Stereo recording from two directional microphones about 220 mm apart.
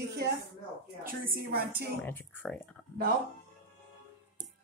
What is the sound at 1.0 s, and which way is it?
Speech, 40° right (ahead or behind).